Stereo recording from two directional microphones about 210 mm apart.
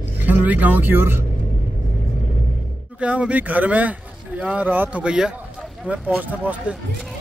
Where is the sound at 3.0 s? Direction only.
5° right (ahead or behind).